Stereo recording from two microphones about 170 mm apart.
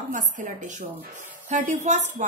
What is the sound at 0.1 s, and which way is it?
A woman's voice, 50° right (ahead or behind).